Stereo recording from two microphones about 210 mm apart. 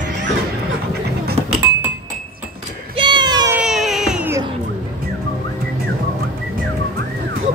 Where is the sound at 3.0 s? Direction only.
20° right (ahead or behind).